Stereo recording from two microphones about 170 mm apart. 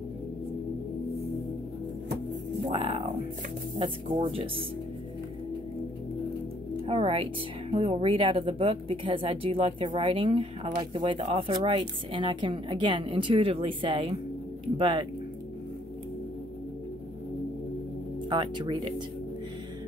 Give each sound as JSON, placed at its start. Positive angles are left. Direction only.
{"t": 2.7, "sound": "speech", "side_deg": -35}
{"t": 6.9, "sound": "a woman's voice", "side_deg": -35}
{"t": 18.3, "sound": "a woman's voice", "side_deg": -25}